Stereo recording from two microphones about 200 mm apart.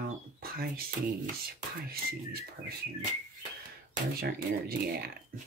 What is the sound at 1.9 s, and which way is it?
Speech, 50° right (ahead or behind).